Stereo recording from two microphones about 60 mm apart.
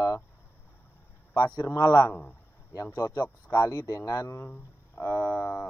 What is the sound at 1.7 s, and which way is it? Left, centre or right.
Speech, left.